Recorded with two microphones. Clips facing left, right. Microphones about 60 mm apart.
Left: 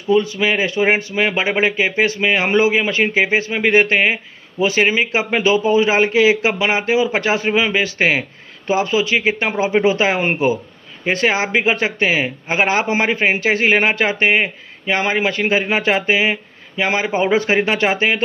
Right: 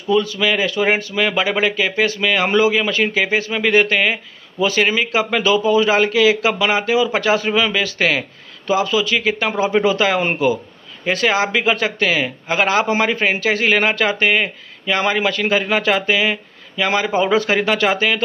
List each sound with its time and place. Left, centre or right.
0.1 s speech: left